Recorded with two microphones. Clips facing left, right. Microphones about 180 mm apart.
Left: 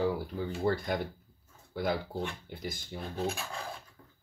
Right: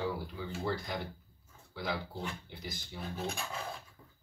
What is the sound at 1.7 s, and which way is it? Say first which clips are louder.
Speech: left 6 dB; 50° left (ahead or behind).